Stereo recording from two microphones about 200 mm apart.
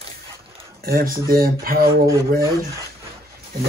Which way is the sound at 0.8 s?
45° right (ahead or behind).